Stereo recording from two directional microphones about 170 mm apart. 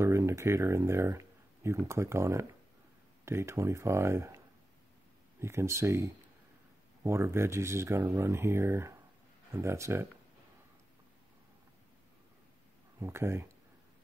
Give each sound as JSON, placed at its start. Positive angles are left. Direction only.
{"t": 0.0, "sound": "speech", "side_deg": -15}
{"t": 5.4, "sound": "speech", "side_deg": -15}
{"t": 13.0, "sound": "speech", "side_deg": -15}